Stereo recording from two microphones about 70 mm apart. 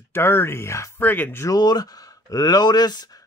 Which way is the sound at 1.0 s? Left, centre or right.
Left.